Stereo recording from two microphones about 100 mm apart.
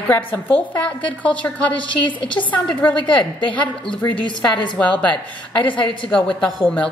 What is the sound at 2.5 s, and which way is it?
Speech, 15° left (ahead or behind).